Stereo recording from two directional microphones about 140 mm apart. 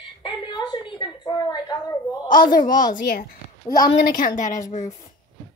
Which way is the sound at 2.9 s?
90° left.